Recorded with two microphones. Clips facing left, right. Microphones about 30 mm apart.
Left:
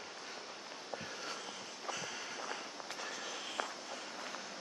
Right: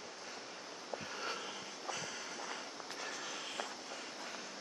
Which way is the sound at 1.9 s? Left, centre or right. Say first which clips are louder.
Left 1 dB; centre.